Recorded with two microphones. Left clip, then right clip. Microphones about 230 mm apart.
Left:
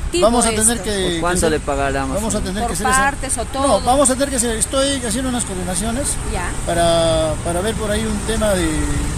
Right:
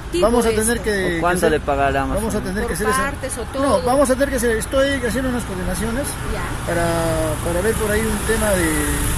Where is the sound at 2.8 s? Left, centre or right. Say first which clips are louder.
Left 4 dB; left.